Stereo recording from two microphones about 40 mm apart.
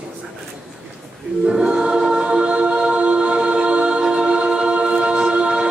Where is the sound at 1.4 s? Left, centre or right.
Centre.